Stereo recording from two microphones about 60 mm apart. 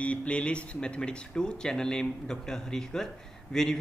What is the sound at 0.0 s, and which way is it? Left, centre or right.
A man's voice, left.